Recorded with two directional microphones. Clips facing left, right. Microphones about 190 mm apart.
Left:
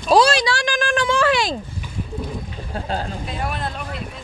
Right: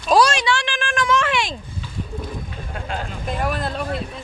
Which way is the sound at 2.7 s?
35° left (ahead or behind).